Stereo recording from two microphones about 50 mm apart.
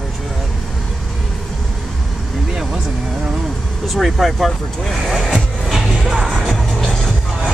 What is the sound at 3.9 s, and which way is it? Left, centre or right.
Speech, centre.